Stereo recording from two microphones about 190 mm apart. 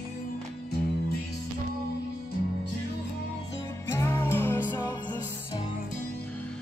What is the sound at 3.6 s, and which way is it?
Music, 15° left (ahead or behind).